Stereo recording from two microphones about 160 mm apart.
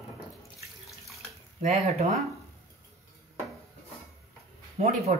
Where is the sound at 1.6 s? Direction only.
40° right (ahead or behind).